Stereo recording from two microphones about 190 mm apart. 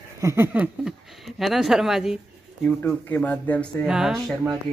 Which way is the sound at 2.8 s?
10° left (ahead or behind).